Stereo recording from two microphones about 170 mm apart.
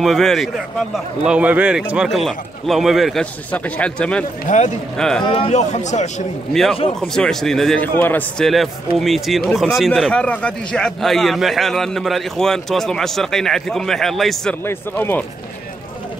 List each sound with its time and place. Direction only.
0.0 s a man's voice: centre (ahead or behind)
4.5 s speech: 45° left (ahead or behind)
4.9 s a man's voice: 5° left (ahead or behind)
5.2 s speech: 35° left (ahead or behind)
6.5 s a man's voice: centre (ahead or behind)
14.6 s speech: 15° left (ahead or behind)